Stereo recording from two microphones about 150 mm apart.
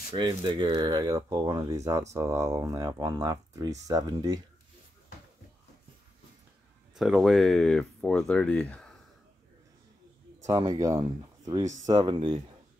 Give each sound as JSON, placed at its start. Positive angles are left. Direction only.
{"t": 0.1, "sound": "speech", "side_deg": -35}
{"t": 7.0, "sound": "speech", "side_deg": 0}
{"t": 10.4, "sound": "speech", "side_deg": -25}